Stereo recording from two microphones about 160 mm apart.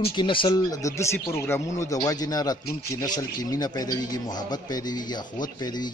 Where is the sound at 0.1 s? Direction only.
30° left (ahead or behind).